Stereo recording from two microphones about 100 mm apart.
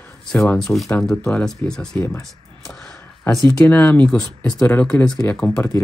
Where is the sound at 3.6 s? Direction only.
20° left (ahead or behind).